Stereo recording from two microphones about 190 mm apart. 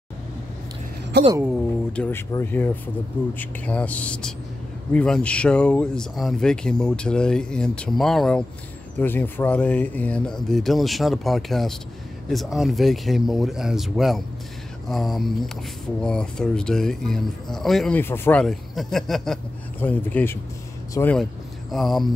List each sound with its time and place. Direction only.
1.1 s speech: 60° right (ahead or behind)
1.9 s speech: 10° left (ahead or behind)